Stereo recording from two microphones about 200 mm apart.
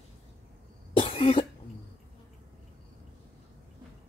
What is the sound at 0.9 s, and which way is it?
Cough, 30° left (ahead or behind).